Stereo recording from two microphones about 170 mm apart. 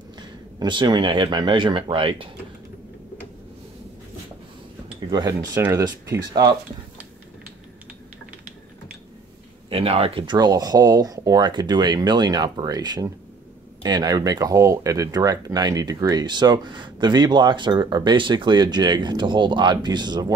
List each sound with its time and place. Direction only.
0.6 s speech: 25° right (ahead or behind)
5.1 s speech: 25° right (ahead or behind)
9.7 s speech: 35° right (ahead or behind)